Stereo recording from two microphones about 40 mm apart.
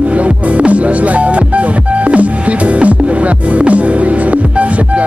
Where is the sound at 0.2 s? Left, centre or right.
Right.